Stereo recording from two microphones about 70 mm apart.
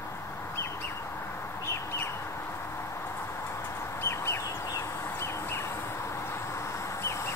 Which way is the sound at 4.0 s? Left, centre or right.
Left.